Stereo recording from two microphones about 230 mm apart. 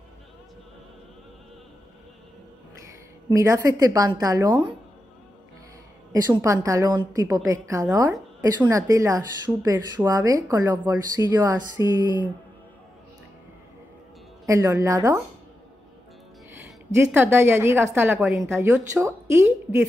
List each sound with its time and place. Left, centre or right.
3.3 s speech: centre
6.1 s speech: centre
14.4 s speech: centre
16.9 s speech: centre